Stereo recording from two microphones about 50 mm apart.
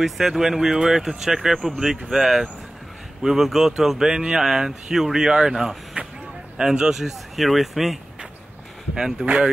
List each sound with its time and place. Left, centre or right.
0.0 s speech: centre
9.2 s speech: right